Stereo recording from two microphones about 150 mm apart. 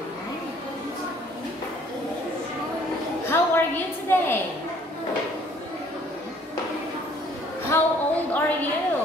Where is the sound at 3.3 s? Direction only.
15° left (ahead or behind).